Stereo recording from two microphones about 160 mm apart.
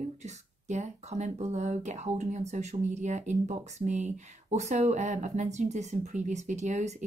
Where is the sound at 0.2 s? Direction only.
45° right (ahead or behind).